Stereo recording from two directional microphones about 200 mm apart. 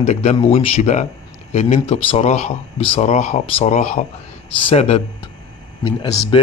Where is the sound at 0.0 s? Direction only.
35° left (ahead or behind).